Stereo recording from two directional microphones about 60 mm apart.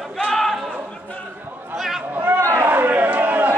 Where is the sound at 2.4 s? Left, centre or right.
Right.